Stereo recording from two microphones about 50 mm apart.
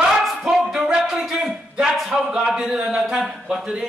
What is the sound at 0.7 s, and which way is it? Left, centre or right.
Music, centre.